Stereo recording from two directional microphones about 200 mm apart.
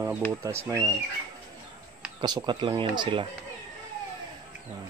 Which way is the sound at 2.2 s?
20° right (ahead or behind).